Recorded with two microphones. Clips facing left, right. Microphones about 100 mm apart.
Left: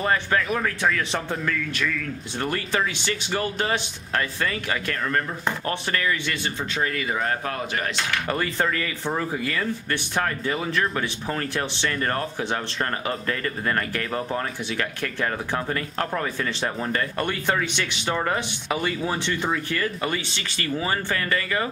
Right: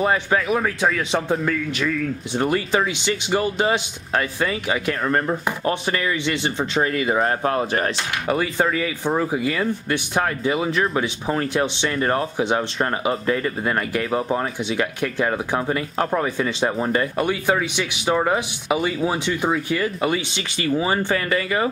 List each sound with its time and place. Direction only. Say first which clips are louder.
0.0 s speech: right 3 dB; 15° right (ahead or behind); by 7.9 s 35° right (ahead or behind)
8.1 s speech: right 3 dB; 10° right (ahead or behind)